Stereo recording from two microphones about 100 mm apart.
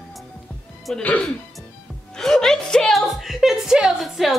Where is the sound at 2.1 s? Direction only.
5° left (ahead or behind).